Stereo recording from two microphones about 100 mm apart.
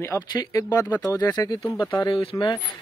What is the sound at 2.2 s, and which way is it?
Speech, 65° left (ahead or behind).